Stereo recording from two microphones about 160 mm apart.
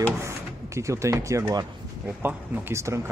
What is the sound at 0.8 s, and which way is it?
Speech, 20° right (ahead or behind).